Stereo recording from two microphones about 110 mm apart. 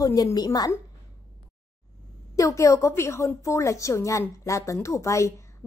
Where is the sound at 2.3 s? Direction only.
30° left (ahead or behind).